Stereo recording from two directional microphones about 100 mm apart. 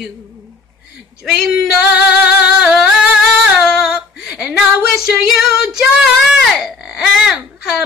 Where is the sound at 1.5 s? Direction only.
15° right (ahead or behind).